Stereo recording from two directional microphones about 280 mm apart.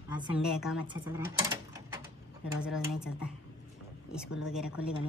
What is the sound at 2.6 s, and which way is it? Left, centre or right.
Speech, centre.